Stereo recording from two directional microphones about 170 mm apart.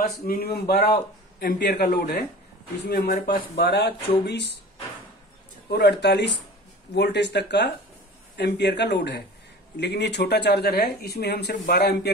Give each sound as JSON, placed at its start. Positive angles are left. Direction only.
{"t": 0.0, "sound": "speech", "side_deg": 60}
{"t": 5.7, "sound": "speech", "side_deg": 70}